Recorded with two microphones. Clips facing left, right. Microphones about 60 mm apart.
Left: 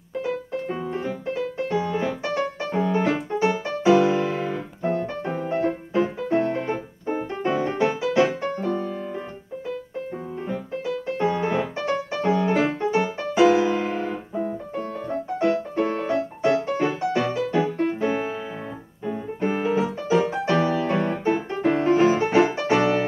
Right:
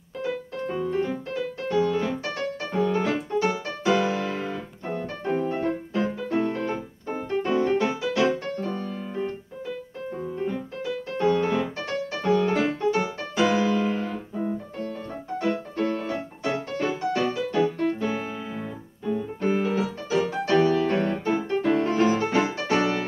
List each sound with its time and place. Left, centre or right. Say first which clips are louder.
0.2 s music: left 1 dB; centre
10.3 s music: left 1 dB; left
17.7 s keyboard: left 3 dB; left
19.0 s music: even; left